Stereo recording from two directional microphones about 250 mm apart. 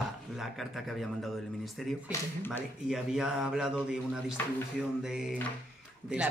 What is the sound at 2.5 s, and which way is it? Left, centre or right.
Speech, centre.